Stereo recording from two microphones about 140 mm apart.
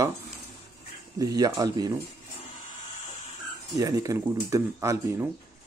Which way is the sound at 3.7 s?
25° right (ahead or behind).